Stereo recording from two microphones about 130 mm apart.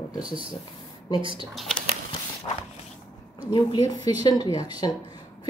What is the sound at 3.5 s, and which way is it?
Speech, 30° left (ahead or behind).